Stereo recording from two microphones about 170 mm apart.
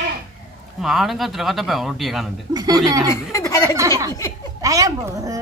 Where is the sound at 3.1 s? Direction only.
20° left (ahead or behind).